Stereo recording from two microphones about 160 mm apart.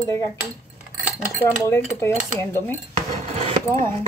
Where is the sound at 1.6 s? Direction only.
15° left (ahead or behind).